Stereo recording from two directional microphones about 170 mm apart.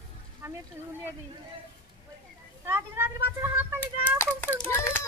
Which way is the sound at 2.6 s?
15° right (ahead or behind).